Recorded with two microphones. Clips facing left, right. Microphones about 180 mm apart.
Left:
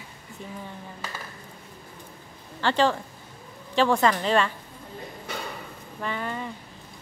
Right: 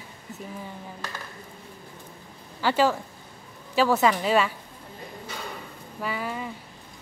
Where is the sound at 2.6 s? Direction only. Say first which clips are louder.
Even; 10° right (ahead or behind).